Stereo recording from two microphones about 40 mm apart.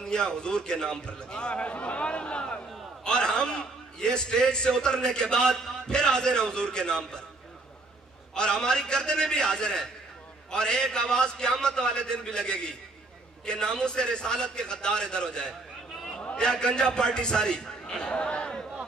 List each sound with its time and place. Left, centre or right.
0.0 s a man's voice: centre
8.4 s a man's voice: centre